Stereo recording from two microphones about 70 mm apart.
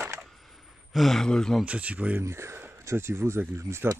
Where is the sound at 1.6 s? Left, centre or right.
Centre.